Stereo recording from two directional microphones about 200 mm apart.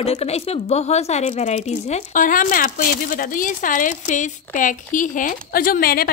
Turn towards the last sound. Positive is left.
turn(degrees=45)  # may be behind; listen again after turning